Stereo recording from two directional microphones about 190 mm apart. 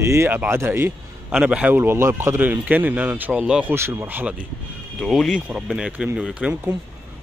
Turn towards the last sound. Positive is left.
turn(degrees=-5)  # may be behind; listen again after turning